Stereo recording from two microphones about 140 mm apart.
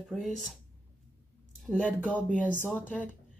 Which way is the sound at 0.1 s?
Centre (ahead or behind).